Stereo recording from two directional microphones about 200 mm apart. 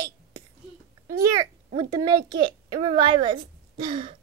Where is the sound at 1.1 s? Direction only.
15° right (ahead or behind).